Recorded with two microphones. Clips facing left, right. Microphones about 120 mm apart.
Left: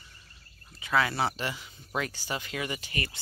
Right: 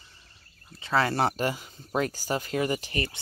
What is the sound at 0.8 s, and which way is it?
Speech, 35° right (ahead or behind).